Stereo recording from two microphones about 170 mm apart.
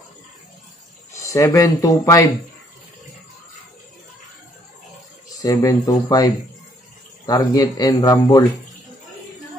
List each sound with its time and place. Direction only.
1.2 s speech: 20° left (ahead or behind)
5.4 s speech: 20° left (ahead or behind)